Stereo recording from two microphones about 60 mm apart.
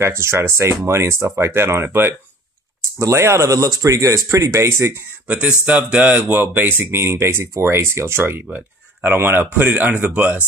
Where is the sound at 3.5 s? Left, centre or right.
Right.